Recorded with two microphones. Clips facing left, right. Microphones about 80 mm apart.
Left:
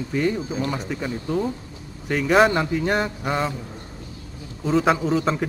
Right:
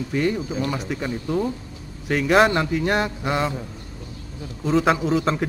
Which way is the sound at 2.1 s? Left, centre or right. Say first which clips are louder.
Even; centre.